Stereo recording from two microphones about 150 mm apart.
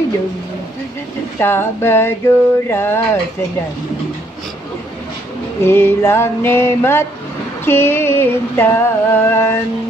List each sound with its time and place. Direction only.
1.4 s music: 15° left (ahead or behind)
5.6 s music: 15° left (ahead or behind)